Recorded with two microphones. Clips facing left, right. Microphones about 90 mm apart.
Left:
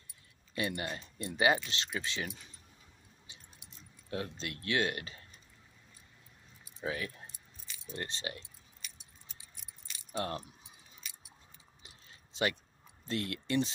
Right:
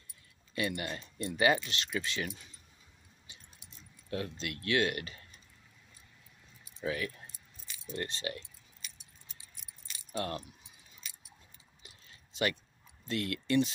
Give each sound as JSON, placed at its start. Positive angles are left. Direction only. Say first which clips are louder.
{"t": 0.6, "sound": "speech", "louder": "right 1 dB", "side_deg": 25}
{"t": 3.3, "sound": "keys jangling", "louder": "right 1 dB", "side_deg": 25}
{"t": 4.1, "sound": "speech", "louder": "right 1 dB", "side_deg": 25}
{"t": 6.8, "sound": "speech", "louder": "right 2 dB", "side_deg": 25}
{"t": 10.1, "sound": "speech", "louder": "even", "side_deg": 25}
{"t": 11.8, "sound": "keys jangling", "louder": "right 1 dB", "side_deg": 25}
{"t": 13.0, "sound": "speech", "louder": "right 1 dB", "side_deg": 30}